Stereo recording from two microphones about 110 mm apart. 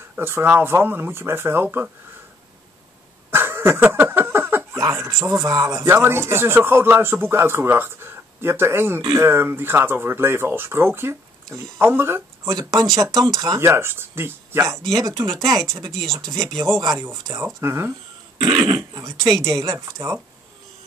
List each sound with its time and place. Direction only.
0.1 s speech: 20° right (ahead or behind)
3.3 s a sound: 20° right (ahead or behind)
5.2 s speech: 25° right (ahead or behind)
13.2 s speech: 30° right (ahead or behind)
15.9 s speech: 5° left (ahead or behind)
16.4 s speech: 30° right (ahead or behind)
18.4 s speech: 40° right (ahead or behind)